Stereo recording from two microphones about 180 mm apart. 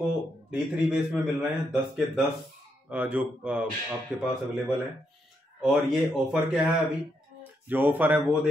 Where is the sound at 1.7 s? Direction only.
Centre (ahead or behind).